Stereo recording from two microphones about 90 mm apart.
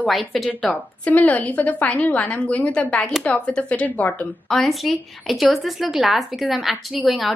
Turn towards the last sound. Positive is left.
turn(degrees=0)  # may be behind; listen again after turning